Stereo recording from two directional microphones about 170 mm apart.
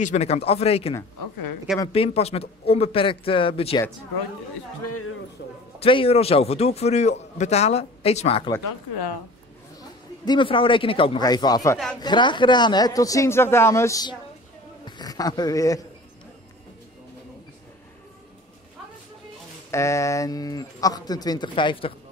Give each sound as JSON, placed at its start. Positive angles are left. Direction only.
{"t": 0.0, "sound": "a man's voice", "side_deg": 40}
{"t": 5.4, "sound": "a man's voice", "side_deg": 90}
{"t": 5.8, "sound": "a man's voice", "side_deg": 35}
{"t": 9.8, "sound": "a man's voice", "side_deg": 25}
{"t": 19.7, "sound": "speech", "side_deg": 15}